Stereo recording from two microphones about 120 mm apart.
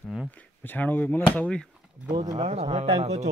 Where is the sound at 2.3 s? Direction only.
55° right (ahead or behind).